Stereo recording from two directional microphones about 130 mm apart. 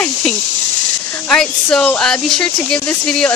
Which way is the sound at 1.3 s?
5° left (ahead or behind).